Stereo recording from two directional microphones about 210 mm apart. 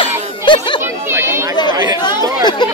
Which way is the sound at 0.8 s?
10° right (ahead or behind).